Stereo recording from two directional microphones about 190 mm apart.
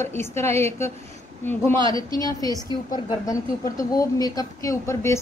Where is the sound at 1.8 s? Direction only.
25° right (ahead or behind).